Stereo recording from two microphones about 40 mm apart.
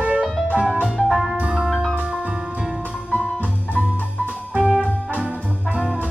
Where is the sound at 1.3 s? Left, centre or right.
Right.